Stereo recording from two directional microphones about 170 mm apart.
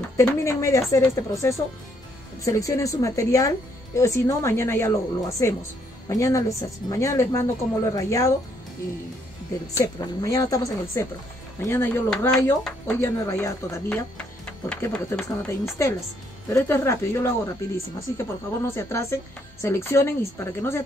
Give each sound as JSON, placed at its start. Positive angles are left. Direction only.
{"t": 0.2, "sound": "speech", "side_deg": 15}
{"t": 9.8, "sound": "a woman's voice", "side_deg": 20}
{"t": 13.0, "sound": "speech", "side_deg": 15}